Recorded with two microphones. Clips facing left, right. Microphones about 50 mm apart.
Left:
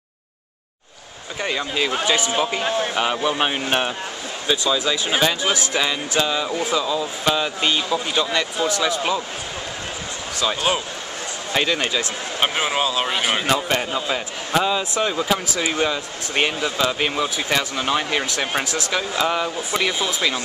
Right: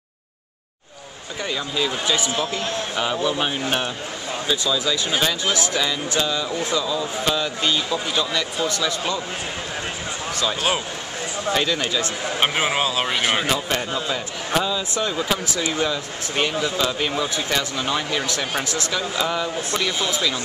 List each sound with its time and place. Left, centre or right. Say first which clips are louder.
1.4 s speech: left 2 dB; left
2.0 s speech: left 2 dB; centre
2.3 s speech: left 4 dB; centre
4.7 s speech: left 1 dB; centre
10.3 s speech: left 2 dB; centre
12.4 s speech: even; centre
13.7 s speech: left 2 dB; centre
15.4 s speech: left 1 dB; centre
15.7 s speech: left 1 dB; centre
18.9 s speech: left 3 dB; centre